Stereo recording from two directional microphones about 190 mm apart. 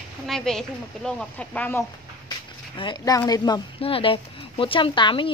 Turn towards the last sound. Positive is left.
turn(degrees=25)  # may be behind; listen again after turning